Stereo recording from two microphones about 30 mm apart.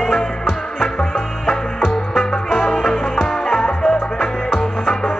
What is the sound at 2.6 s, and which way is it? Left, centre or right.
Music, centre.